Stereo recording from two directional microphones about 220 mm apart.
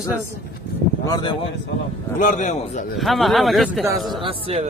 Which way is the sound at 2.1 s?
35° left (ahead or behind).